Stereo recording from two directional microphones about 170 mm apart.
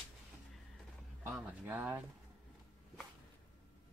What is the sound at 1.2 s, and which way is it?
Speech, 15° right (ahead or behind).